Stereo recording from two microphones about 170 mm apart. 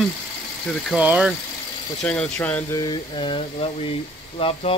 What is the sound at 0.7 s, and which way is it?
Speech, centre (ahead or behind).